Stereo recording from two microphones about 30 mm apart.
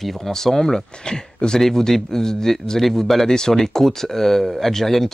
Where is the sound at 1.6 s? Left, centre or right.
Centre.